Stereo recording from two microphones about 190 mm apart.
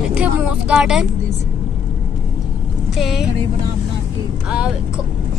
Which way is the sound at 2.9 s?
Centre (ahead or behind).